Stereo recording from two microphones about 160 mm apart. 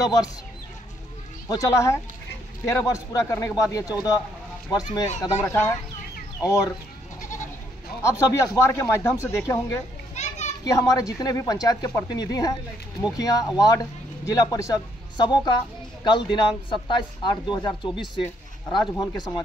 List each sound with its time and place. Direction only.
1.5 s speech: 20° left (ahead or behind)
8.0 s speech: 20° left (ahead or behind)
10.1 s children playing: 45° left (ahead or behind)
10.6 s speech: 20° left (ahead or behind)